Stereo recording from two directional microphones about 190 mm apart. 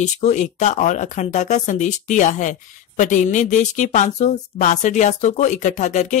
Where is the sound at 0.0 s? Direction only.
40° left (ahead or behind).